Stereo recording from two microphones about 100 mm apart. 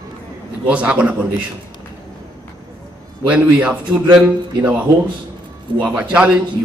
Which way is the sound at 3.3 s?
15° right (ahead or behind).